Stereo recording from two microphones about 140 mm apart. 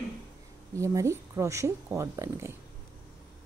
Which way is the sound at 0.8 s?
20° right (ahead or behind).